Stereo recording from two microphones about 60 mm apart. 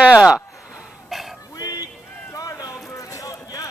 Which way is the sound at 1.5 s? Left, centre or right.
Left.